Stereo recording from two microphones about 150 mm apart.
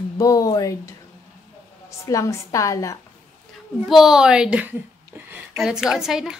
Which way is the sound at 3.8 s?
Centre (ahead or behind).